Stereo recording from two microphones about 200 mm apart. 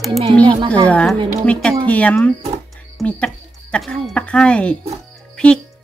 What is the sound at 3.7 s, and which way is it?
Speech, 5° left (ahead or behind).